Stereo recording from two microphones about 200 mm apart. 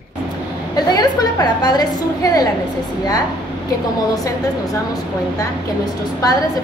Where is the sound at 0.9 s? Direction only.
20° left (ahead or behind).